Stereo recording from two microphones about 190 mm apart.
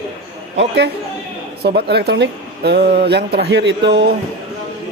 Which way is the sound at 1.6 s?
60° right (ahead or behind).